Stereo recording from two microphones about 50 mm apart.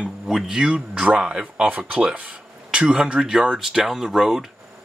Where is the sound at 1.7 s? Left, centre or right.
Right; by 4.4 s centre.